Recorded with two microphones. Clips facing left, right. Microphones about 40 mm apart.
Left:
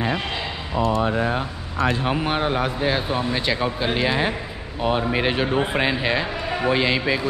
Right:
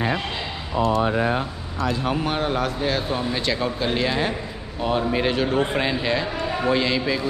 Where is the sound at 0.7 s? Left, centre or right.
Centre.